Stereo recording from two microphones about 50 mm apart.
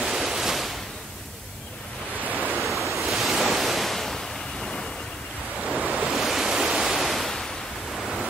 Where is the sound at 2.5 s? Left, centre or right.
Centre.